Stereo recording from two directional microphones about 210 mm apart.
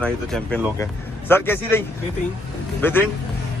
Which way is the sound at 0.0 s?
5° left (ahead or behind).